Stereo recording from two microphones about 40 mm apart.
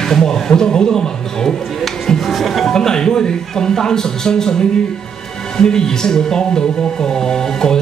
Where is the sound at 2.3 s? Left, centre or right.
Centre.